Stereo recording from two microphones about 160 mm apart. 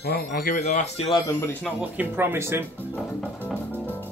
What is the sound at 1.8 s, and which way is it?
Speech, 10° right (ahead or behind).